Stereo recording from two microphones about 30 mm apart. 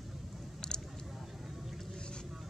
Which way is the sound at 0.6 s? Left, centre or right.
Left.